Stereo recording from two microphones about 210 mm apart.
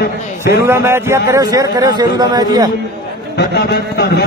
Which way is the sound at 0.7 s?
10° right (ahead or behind).